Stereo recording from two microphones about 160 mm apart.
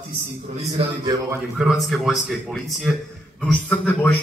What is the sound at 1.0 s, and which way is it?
Speech, 25° right (ahead or behind).